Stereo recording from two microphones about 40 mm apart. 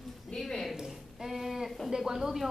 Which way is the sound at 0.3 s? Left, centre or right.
Left.